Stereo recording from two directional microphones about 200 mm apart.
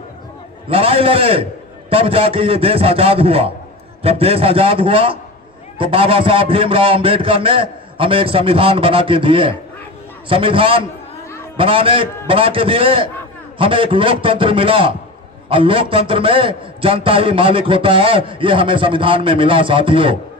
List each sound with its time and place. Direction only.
0.7 s a man's voice: 30° right (ahead or behind)